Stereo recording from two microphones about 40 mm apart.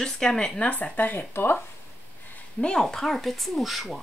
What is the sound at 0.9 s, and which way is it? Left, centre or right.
Speech, left.